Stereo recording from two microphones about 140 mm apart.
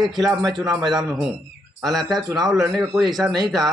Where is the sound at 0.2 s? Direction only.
Centre (ahead or behind).